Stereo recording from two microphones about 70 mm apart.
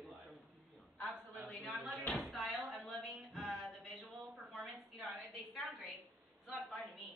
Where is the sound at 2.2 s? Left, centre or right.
Centre.